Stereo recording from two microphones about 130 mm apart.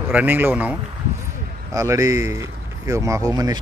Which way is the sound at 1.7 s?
25° right (ahead or behind).